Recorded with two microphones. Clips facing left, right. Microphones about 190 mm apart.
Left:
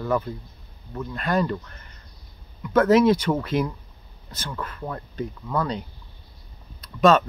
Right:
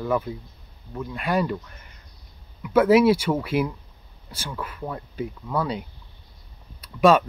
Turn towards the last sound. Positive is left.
turn(degrees=-10)  # may be behind; listen again after turning